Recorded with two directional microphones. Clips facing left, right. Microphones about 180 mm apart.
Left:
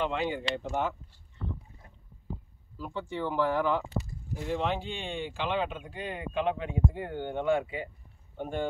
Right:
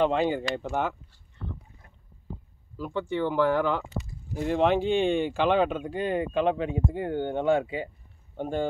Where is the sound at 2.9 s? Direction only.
70° right (ahead or behind).